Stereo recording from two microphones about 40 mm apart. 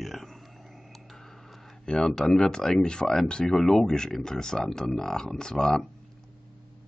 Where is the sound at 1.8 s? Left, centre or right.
Left.